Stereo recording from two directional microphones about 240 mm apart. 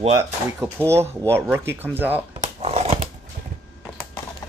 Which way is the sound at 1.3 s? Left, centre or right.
Centre.